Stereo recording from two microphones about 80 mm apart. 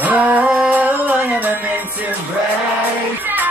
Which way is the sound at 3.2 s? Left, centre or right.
Right.